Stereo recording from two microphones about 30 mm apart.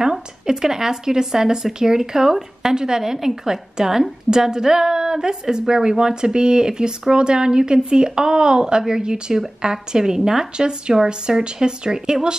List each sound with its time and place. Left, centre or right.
0.0 s speech: centre